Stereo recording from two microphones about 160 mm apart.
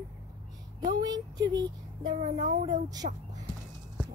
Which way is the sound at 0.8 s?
25° right (ahead or behind).